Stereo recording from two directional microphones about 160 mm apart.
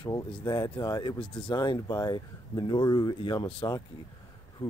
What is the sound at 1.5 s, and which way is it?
Speech, 25° left (ahead or behind).